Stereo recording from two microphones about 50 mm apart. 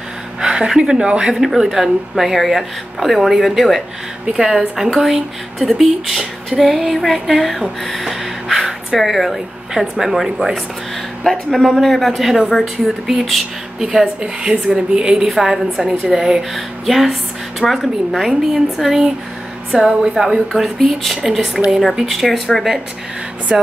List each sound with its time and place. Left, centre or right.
0.4 s speech: centre
1.3 s speech: centre
7.8 s gasp: centre
9.9 s a woman's voice: centre
19.7 s a woman's voice: centre
23.5 s a woman's voice: centre